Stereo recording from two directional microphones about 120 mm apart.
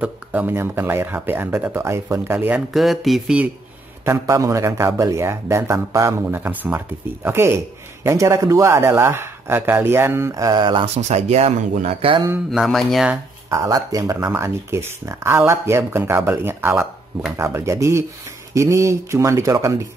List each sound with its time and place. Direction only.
0.0 s a man's voice: 15° right (ahead or behind)
2.7 s speech: centre (ahead or behind)
4.0 s a man's voice: 20° right (ahead or behind); by 10.9 s 40° right (ahead or behind)
11.0 s speech: 65° right (ahead or behind)
12.4 s speech: centre (ahead or behind)
13.5 s a man's voice: 30° right (ahead or behind)